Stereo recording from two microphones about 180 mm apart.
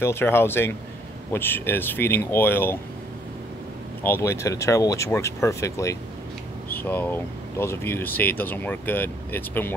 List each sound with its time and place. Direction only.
0.0 s speech: 15° left (ahead or behind)
4.0 s speech: 15° left (ahead or behind)